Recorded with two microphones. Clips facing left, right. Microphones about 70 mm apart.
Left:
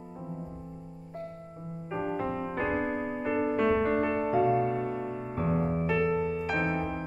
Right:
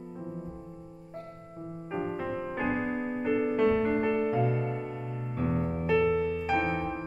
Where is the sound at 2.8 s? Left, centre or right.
Centre.